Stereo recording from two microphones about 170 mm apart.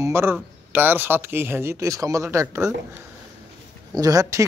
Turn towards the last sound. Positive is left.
turn(degrees=-20)  # may be behind; listen again after turning